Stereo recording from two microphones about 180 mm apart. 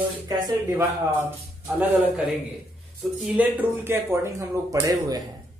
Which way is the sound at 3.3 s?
10° right (ahead or behind).